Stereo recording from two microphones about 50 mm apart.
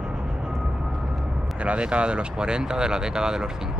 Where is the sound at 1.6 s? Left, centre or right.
Right.